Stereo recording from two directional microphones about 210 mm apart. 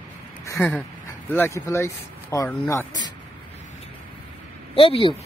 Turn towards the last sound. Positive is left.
turn(degrees=25)  # may be behind; listen again after turning